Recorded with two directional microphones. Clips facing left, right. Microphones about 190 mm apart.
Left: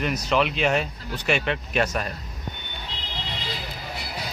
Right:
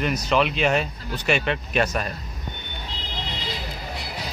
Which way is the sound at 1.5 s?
40° right (ahead or behind).